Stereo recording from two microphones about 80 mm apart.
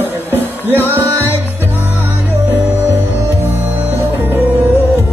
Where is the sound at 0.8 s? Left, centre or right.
Right.